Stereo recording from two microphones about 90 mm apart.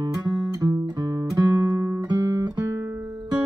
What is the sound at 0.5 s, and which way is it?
Music, 45° right (ahead or behind).